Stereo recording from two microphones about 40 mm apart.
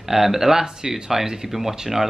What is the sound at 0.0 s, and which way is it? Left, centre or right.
Speech, centre.